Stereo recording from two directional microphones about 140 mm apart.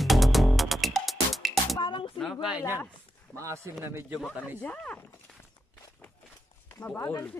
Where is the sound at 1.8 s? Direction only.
35° left (ahead or behind).